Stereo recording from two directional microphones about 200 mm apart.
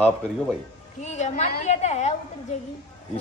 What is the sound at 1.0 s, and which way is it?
A woman's voice, 35° left (ahead or behind).